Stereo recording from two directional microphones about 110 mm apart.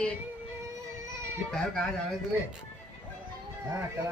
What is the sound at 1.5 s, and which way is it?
Speech, 5° left (ahead or behind).